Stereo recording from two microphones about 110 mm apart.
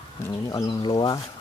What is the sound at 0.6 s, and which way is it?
Speech, 45° left (ahead or behind).